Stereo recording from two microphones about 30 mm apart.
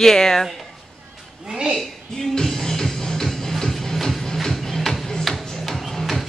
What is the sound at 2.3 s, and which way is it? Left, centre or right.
Music, centre.